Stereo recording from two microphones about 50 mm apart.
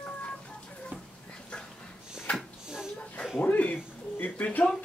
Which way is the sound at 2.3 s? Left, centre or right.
Left.